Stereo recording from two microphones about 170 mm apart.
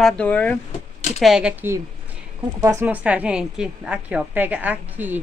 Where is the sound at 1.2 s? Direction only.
5° right (ahead or behind).